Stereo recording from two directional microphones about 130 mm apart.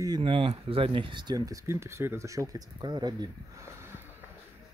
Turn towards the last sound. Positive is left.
turn(degrees=-30)  # may be behind; listen again after turning